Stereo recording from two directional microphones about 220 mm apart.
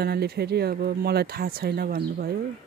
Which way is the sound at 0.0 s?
45° right (ahead or behind).